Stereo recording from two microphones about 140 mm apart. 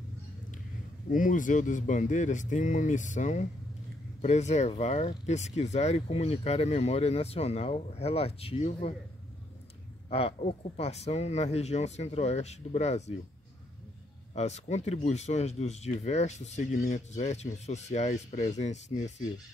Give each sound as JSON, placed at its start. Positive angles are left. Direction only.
{"t": 1.1, "sound": "speech", "side_deg": 70}
{"t": 10.0, "sound": "speech", "side_deg": 45}
{"t": 14.3, "sound": "speech", "side_deg": 50}